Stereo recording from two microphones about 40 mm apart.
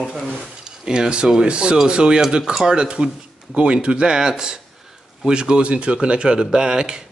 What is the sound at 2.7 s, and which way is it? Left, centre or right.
Speech, right.